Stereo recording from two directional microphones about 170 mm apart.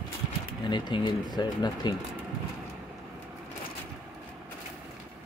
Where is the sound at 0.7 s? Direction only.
25° left (ahead or behind).